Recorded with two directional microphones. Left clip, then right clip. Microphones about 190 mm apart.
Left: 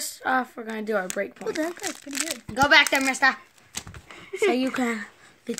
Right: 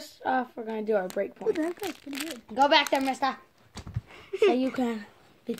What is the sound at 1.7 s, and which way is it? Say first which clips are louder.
Speech: left 3 dB; 5° left (ahead or behind).